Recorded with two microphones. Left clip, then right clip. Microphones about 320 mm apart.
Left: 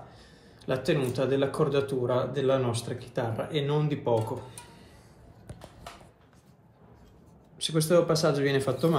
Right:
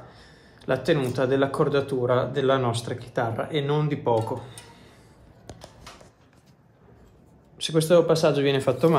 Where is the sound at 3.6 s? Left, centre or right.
Centre.